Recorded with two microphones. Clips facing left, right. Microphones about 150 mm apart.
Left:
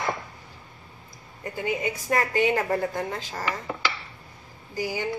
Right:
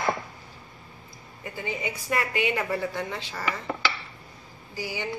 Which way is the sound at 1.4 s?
45° left (ahead or behind).